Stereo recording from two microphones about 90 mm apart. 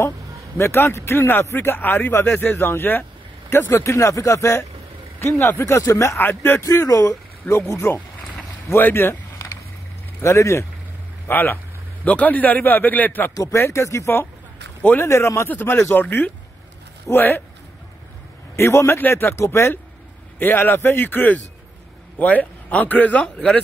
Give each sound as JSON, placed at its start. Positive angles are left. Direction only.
{"t": 0.6, "sound": "speech", "side_deg": 30}
{"t": 6.2, "sound": "speech", "side_deg": 25}
{"t": 6.6, "sound": "speech", "side_deg": 35}
{"t": 8.6, "sound": "a sound", "side_deg": 25}
{"t": 10.2, "sound": "speech", "side_deg": 35}
{"t": 11.2, "sound": "a man's voice", "side_deg": 20}
{"t": 13.3, "sound": "speech", "side_deg": 35}
{"t": 14.8, "sound": "speech", "side_deg": 15}
{"t": 15.0, "sound": "speech", "side_deg": 30}
{"t": 18.6, "sound": "speech", "side_deg": 30}